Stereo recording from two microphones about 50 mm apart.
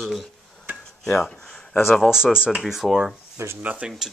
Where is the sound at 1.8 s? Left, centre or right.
Centre.